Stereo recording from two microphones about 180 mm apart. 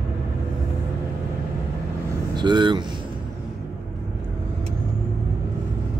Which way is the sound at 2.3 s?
25° right (ahead or behind).